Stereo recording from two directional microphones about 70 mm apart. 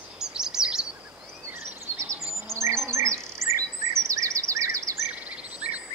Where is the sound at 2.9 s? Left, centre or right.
Right.